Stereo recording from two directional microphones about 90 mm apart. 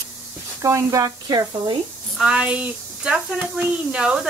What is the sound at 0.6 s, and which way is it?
Speech, 35° right (ahead or behind).